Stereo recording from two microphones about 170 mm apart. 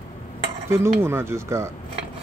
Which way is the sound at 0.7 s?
15° right (ahead or behind).